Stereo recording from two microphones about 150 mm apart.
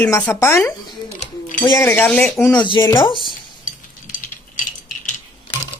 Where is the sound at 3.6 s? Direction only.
65° left (ahead or behind).